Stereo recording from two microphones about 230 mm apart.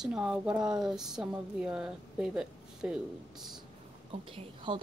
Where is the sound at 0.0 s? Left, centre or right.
Centre.